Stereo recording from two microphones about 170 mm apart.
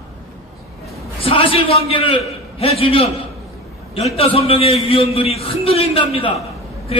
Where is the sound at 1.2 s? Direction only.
35° left (ahead or behind).